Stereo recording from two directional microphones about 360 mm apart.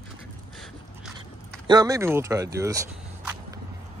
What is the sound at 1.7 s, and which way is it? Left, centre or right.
Speech, centre.